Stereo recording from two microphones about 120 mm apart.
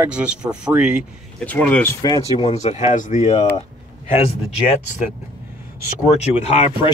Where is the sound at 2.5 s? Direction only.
70° left (ahead or behind).